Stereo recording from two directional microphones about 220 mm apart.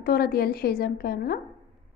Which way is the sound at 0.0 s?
45° left (ahead or behind).